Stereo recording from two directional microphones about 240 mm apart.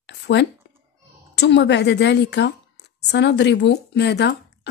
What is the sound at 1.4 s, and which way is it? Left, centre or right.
A woman's voice, left.